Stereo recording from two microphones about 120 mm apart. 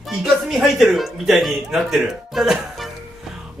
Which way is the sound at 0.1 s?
Centre (ahead or behind).